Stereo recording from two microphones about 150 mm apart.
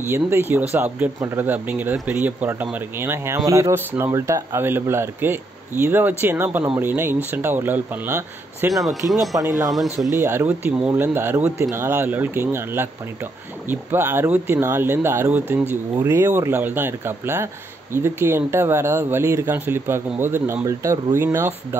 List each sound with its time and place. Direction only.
0.0 s speech: 15° right (ahead or behind)